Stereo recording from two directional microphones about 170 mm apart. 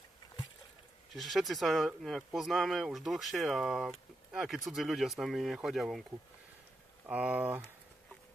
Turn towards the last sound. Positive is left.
turn(degrees=-10)  # may be behind; listen again after turning